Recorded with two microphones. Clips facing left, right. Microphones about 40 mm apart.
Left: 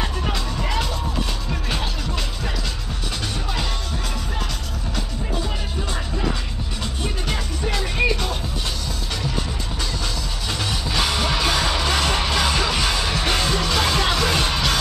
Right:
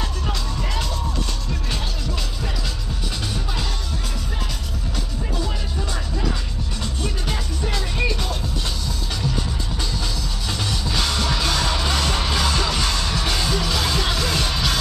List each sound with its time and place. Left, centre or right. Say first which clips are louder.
0.0 s music: left 2 dB; centre
7.2 s music: left 1 dB; centre
10.6 s music: left 1 dB; centre